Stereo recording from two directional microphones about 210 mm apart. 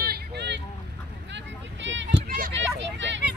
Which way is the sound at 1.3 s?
60° right (ahead or behind).